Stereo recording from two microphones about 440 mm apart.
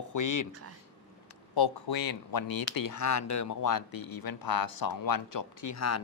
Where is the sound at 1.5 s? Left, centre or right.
Left.